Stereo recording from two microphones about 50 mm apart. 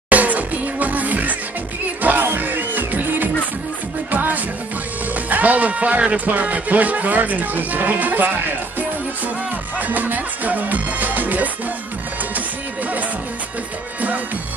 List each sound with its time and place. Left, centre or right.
0.1 s music: right